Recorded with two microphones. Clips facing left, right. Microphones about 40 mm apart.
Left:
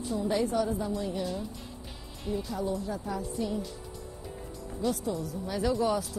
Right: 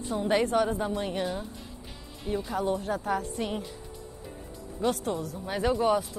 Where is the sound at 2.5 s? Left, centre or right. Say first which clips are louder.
Right 7 dB; right.